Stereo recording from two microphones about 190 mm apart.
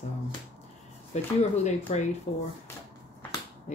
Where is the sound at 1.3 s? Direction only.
35° left (ahead or behind).